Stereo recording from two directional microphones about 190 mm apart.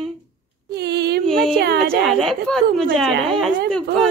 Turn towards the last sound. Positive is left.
turn(degrees=5)  # may be behind; listen again after turning